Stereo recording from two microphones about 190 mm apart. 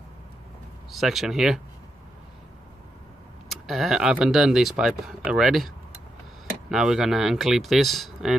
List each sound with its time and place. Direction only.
0.9 s speech: centre (ahead or behind)
3.4 s speech: centre (ahead or behind)
6.7 s speech: 5° right (ahead or behind)